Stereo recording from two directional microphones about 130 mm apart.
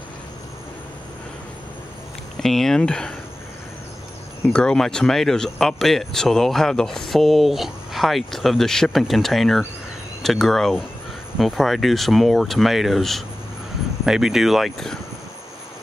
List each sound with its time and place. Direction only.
2.4 s speech: 5° left (ahead or behind)
4.5 s speech: 5° left (ahead or behind)